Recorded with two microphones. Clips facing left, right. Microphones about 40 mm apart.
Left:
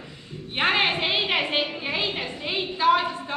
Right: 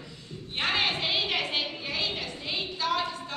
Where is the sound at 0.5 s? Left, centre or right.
Left.